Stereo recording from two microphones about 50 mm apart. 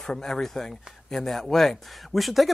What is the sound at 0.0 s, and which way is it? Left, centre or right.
Speech, centre.